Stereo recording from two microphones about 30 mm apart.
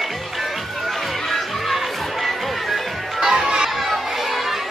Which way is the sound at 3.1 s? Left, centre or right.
Right.